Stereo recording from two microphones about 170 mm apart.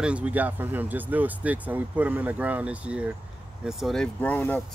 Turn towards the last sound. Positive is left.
turn(degrees=10)  # may be behind; listen again after turning